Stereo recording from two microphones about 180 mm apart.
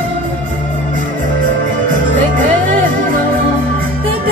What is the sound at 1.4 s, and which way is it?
Music, 50° right (ahead or behind).